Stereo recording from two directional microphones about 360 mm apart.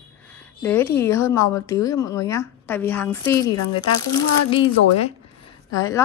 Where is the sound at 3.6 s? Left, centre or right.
Left.